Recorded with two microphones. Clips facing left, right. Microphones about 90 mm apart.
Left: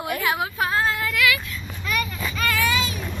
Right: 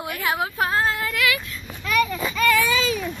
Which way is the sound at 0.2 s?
35° right (ahead or behind).